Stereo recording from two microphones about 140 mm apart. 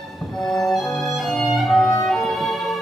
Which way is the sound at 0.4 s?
Centre (ahead or behind).